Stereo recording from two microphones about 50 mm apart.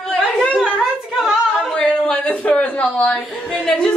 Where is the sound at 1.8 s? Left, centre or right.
Left.